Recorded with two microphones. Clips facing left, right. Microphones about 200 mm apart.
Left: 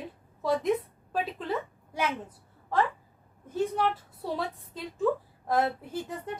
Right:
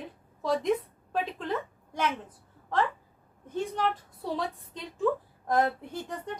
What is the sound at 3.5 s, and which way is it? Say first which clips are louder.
A woman's voice: left 2 dB; 5° left (ahead or behind).